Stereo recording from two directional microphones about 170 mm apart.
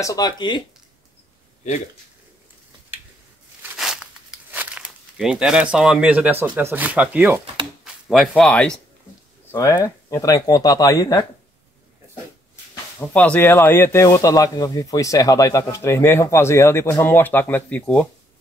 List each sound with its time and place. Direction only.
0.0 s speech: 20° left (ahead or behind)
3.6 s crumpling: 5° right (ahead or behind)
7.8 s a sound: centre (ahead or behind)
8.3 s speech: 5° left (ahead or behind)
9.5 s speech: 15° left (ahead or behind)
13.0 s speech: 10° left (ahead or behind)